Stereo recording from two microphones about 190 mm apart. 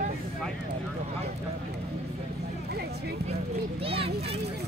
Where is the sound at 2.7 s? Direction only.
55° right (ahead or behind).